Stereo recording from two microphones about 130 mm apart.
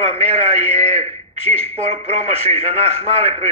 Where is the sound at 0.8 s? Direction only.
60° right (ahead or behind).